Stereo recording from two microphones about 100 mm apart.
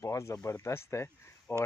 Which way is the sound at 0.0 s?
30° left (ahead or behind).